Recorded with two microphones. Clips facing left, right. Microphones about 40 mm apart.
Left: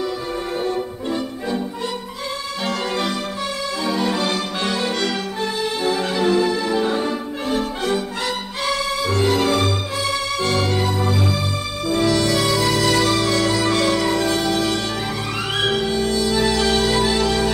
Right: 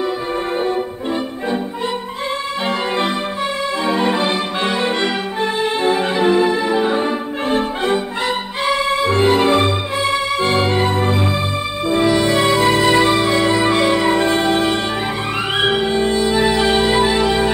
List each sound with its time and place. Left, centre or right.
0.6 s music: right
3.8 s music: right